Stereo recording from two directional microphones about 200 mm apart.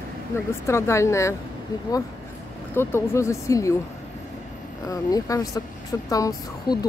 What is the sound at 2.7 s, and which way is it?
A woman's voice, 15° left (ahead or behind).